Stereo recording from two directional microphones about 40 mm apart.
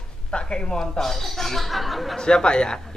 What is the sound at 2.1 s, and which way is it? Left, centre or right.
Speech, centre.